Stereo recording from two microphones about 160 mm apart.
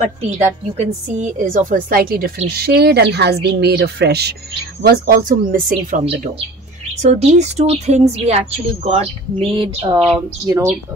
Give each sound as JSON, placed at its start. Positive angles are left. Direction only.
{"t": 0.7, "sound": "a woman's voice", "side_deg": -45}
{"t": 2.5, "sound": "speech", "side_deg": -80}
{"t": 4.8, "sound": "a woman's voice", "side_deg": -65}
{"t": 7.0, "sound": "a woman's voice", "side_deg": -45}
{"t": 10.4, "sound": "speech", "side_deg": -20}